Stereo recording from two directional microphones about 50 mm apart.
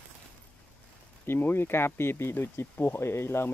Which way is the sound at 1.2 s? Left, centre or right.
Left.